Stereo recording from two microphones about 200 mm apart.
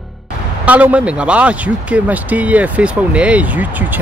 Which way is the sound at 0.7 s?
5° right (ahead or behind).